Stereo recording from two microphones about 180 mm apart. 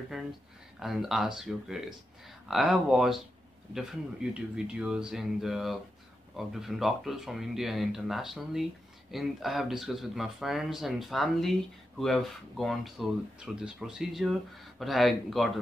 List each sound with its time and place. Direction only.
0.1 s speech: 5° right (ahead or behind)